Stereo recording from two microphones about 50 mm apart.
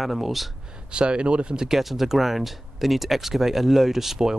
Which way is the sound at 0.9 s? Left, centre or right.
Right.